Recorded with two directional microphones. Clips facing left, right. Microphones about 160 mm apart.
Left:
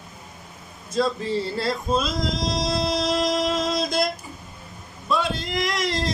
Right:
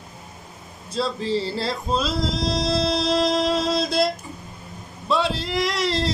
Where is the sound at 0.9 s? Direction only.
30° right (ahead or behind).